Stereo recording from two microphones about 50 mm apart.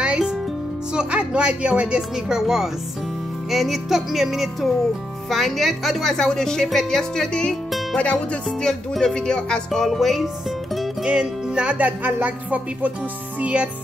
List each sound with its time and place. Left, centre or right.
0.0 s music: centre
0.9 s speech: right
2.1 s a woman's voice: centre
7.9 s speech: left
9.0 s a woman's voice: centre
9.7 s speech: centre
11.1 s speech: centre